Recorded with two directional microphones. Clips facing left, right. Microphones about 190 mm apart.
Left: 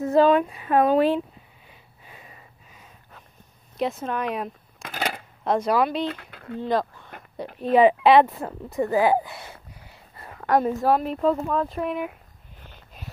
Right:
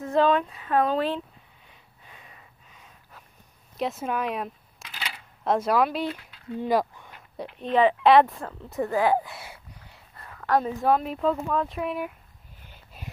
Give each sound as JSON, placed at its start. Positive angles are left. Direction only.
{"t": 0.0, "sound": "speech", "side_deg": 10}
{"t": 1.7, "sound": "a sound", "side_deg": 5}
{"t": 3.7, "sound": "speech", "side_deg": 0}
{"t": 4.8, "sound": "a sound", "side_deg": 50}
{"t": 5.4, "sound": "speech", "side_deg": 0}
{"t": 6.0, "sound": "speech", "side_deg": 60}
{"t": 6.6, "sound": "speech", "side_deg": -10}
{"t": 7.7, "sound": "speech", "side_deg": 5}
{"t": 10.4, "sound": "a woman's voice", "side_deg": 15}
{"t": 10.7, "sound": "speech", "side_deg": 0}
{"t": 13.0, "sound": "a sound", "side_deg": -5}